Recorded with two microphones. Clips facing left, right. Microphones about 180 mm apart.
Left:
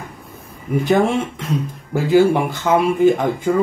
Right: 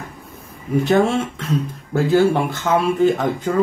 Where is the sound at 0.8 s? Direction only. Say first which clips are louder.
Left 1 dB; 15° left (ahead or behind).